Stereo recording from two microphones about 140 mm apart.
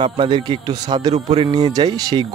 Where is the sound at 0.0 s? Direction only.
35° right (ahead or behind).